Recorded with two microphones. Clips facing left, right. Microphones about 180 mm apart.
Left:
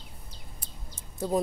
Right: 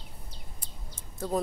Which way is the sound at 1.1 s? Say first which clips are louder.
Left 3 dB; 10° left (ahead or behind).